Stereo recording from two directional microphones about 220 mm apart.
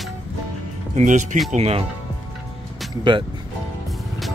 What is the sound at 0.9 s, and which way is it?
Speech, 35° right (ahead or behind).